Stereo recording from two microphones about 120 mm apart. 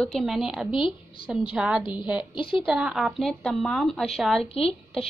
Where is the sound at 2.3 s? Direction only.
45° left (ahead or behind).